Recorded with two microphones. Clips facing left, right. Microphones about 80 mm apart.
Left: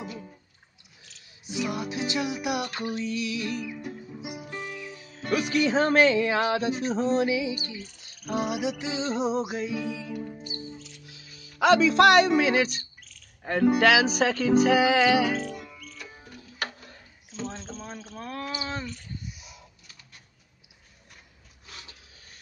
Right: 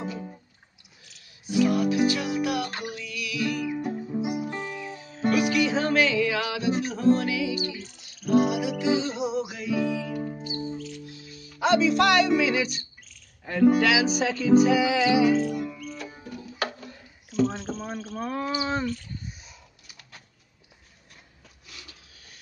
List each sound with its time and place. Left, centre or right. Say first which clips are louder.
1.4 s music: right 8 dB; left
2.8 s music: left 5 dB; left
3.8 s music: right 9 dB; right
5.5 s music: left 1 dB; left
9.8 s music: right 6 dB; right
12.0 s speech: left 3 dB; left
13.4 s music: right 1 dB; left
17.5 s speech: right 5 dB; centre
19.2 s a sound: even; right
21.6 s a sound: left 1 dB; left